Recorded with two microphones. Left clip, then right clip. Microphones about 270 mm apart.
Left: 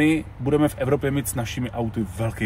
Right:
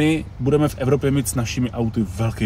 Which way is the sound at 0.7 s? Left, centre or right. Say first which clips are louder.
Right 3 dB; centre.